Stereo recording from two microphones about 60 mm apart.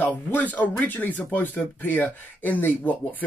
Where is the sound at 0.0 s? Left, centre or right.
Left.